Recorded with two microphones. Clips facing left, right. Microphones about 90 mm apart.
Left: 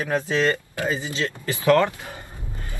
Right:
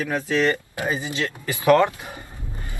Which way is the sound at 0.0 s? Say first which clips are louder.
Even; 20° left (ahead or behind).